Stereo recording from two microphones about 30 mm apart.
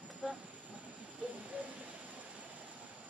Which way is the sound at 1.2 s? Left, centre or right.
Right.